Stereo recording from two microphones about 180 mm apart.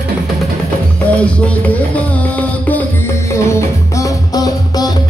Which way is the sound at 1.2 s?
5° left (ahead or behind).